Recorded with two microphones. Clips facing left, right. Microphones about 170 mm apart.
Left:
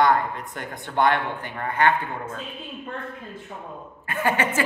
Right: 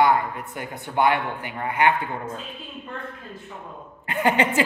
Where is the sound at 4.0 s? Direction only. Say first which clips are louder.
Right 3 dB; 20° right (ahead or behind).